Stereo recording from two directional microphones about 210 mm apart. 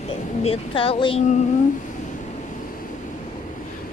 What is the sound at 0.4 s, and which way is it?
Speech, 25° left (ahead or behind).